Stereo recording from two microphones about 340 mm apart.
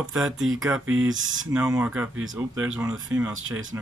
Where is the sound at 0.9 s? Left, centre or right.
Right.